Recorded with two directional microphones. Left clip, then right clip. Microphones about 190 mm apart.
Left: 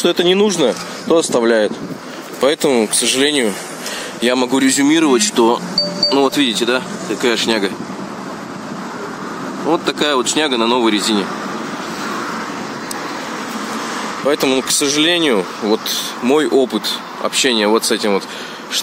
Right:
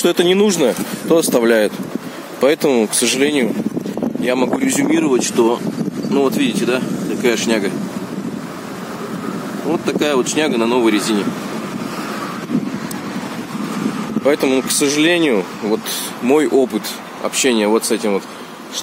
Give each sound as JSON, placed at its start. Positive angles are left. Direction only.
{"t": 0.0, "sound": "speech", "side_deg": -30}
{"t": 2.4, "sound": "speech", "side_deg": -20}
{"t": 9.7, "sound": "speech", "side_deg": 0}
{"t": 14.2, "sound": "speech", "side_deg": -10}